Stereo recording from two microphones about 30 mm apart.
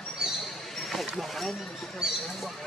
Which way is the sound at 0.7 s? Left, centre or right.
Centre.